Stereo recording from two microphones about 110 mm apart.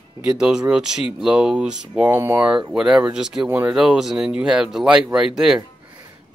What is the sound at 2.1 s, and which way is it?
Speech, 25° right (ahead or behind).